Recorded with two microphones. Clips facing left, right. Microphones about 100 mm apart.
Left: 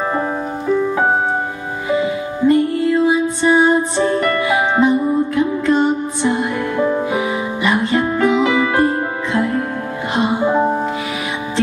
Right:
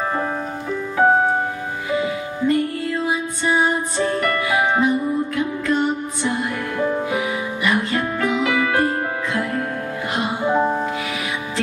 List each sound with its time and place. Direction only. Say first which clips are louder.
1.9 s music: left 5 dB; 25° left (ahead or behind)